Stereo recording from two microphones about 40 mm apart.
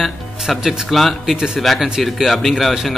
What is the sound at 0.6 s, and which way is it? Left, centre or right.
Speech, centre.